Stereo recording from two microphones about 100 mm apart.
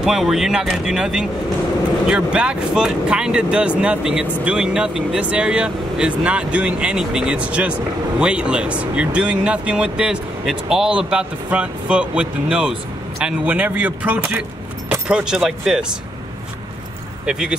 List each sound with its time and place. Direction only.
0.0 s speech: 5° right (ahead or behind)
17.3 s speech: 5° right (ahead or behind)